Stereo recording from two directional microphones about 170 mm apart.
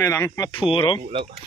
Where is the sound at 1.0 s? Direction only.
35° right (ahead or behind).